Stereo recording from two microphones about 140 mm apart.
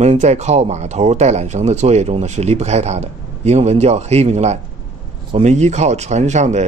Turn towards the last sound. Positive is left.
turn(degrees=-55)  # may be behind; listen again after turning